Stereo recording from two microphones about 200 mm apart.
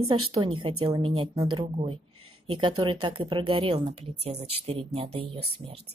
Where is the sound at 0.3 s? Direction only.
25° right (ahead or behind).